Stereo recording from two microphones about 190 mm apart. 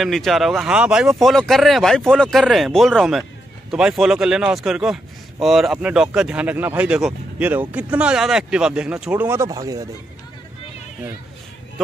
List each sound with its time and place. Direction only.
0.0 s speech: centre (ahead or behind); by 9.8 s 20° right (ahead or behind)